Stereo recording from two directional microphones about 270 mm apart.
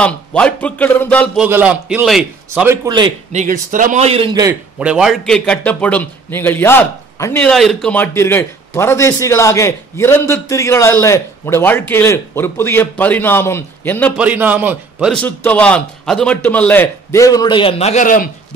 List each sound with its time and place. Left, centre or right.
0.0 s speech: centre
14.1 s a man's voice: centre; by 18.3 s left